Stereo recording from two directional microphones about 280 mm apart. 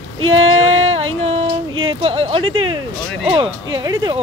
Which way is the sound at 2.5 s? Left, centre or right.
Right.